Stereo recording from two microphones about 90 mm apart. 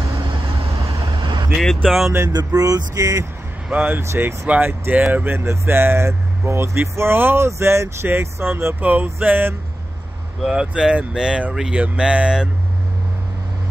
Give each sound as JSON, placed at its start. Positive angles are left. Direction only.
{"t": 0.3, "sound": "vehicle", "side_deg": -80}
{"t": 1.1, "sound": "vehicle", "side_deg": -55}
{"t": 1.6, "sound": "speech", "side_deg": 5}
{"t": 2.2, "sound": "speech", "side_deg": -45}
{"t": 3.6, "sound": "speech", "side_deg": -15}
{"t": 4.0, "sound": "speech", "side_deg": -30}
{"t": 10.4, "sound": "speech", "side_deg": -10}